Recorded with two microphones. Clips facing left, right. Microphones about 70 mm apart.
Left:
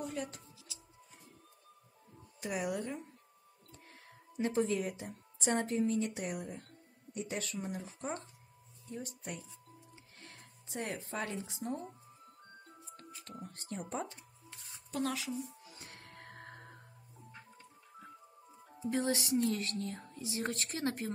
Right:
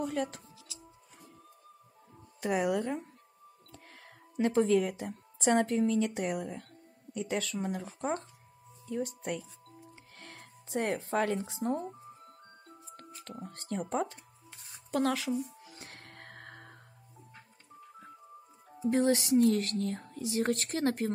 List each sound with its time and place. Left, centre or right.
0.0 s speech: right
2.4 s speech: right
3.7 s a woman's voice: right
6.2 s speech: right
7.2 s speech: right
7.5 s speech: right
13.5 s speech: right
14.9 s speech: right
15.6 s music: right
18.9 s speech: right